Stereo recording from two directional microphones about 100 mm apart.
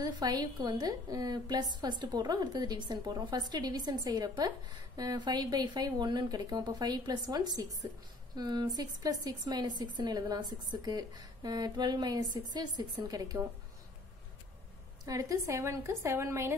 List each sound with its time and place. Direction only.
0.0 s a woman's voice: 40° right (ahead or behind)
15.0 s a woman's voice: 35° right (ahead or behind)